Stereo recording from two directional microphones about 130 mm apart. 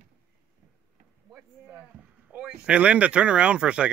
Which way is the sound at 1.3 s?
15° right (ahead or behind).